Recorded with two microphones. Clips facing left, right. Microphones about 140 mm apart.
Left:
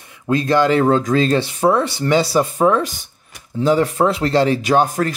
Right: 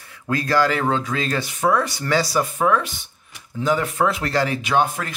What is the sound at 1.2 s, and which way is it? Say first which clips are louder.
Speech: left 6 dB; 25° left (ahead or behind).